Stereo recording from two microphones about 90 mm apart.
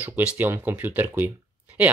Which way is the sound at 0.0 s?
20° right (ahead or behind).